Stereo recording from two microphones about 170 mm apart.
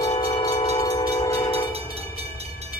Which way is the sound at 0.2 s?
25° left (ahead or behind).